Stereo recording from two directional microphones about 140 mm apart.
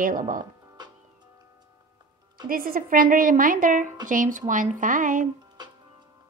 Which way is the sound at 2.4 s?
90° right.